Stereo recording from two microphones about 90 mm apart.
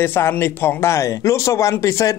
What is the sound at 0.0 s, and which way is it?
Speech, 25° left (ahead or behind).